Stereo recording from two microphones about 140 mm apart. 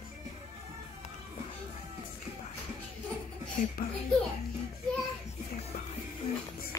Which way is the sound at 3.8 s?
90° left.